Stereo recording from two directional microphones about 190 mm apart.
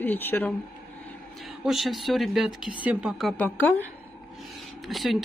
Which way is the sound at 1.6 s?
Centre (ahead or behind).